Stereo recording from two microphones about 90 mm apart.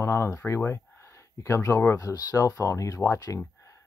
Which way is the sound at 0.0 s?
30° left (ahead or behind).